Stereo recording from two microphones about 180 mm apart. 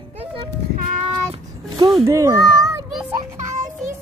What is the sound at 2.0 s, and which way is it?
Speech, 15° right (ahead or behind).